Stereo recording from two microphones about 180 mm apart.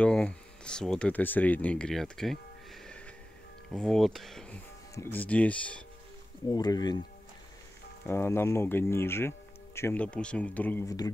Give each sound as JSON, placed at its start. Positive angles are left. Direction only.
{"t": 0.0, "sound": "speech", "side_deg": 5}
{"t": 6.5, "sound": "speech", "side_deg": 20}
{"t": 8.1, "sound": "speech", "side_deg": 15}